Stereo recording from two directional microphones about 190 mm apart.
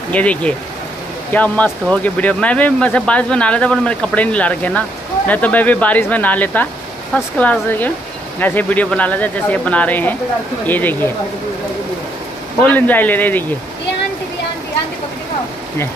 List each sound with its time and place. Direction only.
0.1 s speech: 5° left (ahead or behind)
12.6 s speech: 10° left (ahead or behind)